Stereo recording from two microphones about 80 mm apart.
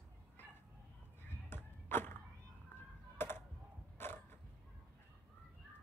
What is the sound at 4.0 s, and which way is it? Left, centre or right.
Mechanisms, left.